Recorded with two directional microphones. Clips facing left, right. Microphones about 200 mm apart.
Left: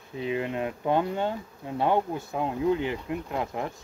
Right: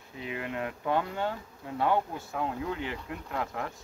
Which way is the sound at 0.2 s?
25° left (ahead or behind).